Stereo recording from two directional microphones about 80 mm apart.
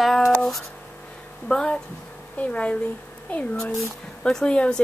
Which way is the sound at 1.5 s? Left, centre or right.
Centre.